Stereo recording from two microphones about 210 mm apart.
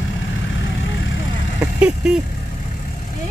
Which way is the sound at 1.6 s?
5° right (ahead or behind).